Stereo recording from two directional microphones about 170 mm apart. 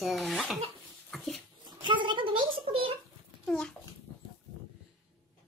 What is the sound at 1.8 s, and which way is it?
Speech, 30° right (ahead or behind).